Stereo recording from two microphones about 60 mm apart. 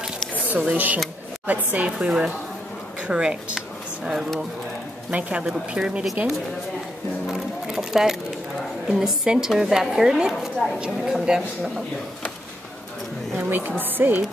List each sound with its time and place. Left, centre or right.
0.5 s a woman's voice: right; by 4.3 s centre
5.1 s speech: right
5.5 s a woman's voice: centre
7.2 s a sound: centre
8.8 s a woman's voice: centre
13.4 s a woman's voice: right